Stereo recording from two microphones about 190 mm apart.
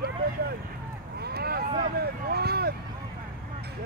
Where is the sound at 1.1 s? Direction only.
55° right (ahead or behind).